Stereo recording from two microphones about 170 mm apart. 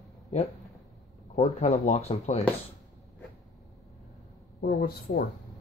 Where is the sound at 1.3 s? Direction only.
45° left (ahead or behind).